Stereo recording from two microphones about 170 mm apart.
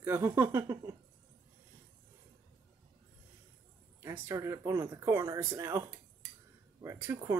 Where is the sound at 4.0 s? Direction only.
15° right (ahead or behind).